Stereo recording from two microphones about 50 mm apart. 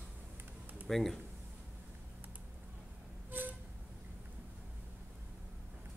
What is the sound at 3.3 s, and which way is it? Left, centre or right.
Vehicle, right.